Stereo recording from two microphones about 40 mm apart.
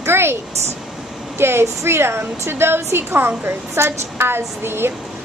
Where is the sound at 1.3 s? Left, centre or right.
Right.